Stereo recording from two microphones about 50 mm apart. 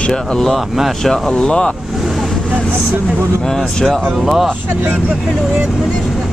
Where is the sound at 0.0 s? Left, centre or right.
Centre.